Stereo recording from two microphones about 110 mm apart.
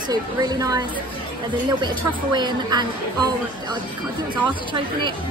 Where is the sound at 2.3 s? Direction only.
40° right (ahead or behind).